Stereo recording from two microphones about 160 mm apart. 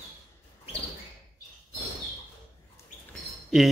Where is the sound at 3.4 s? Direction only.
Centre (ahead or behind).